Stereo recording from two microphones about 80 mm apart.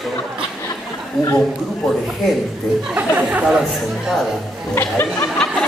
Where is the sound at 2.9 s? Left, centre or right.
Centre.